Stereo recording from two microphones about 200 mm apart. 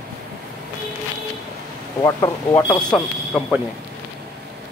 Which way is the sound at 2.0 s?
15° left (ahead or behind).